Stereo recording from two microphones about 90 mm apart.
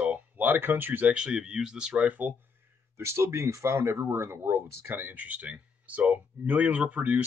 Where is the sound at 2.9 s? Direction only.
30° right (ahead or behind).